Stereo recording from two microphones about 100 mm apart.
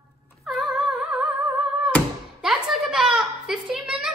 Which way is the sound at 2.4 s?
5° right (ahead or behind).